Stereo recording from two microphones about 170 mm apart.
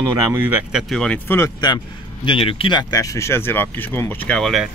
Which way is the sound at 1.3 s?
20° left (ahead or behind).